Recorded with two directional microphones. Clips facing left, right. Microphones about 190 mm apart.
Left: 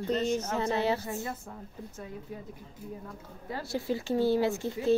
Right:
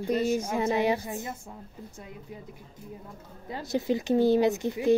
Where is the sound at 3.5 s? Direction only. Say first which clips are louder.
Right 4 dB; 20° right (ahead or behind).